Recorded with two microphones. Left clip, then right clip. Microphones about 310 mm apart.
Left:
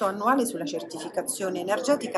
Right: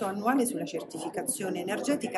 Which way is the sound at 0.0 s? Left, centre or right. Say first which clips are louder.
Left 4 dB; centre.